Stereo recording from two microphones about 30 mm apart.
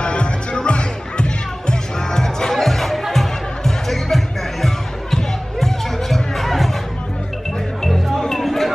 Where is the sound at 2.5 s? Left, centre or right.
Centre.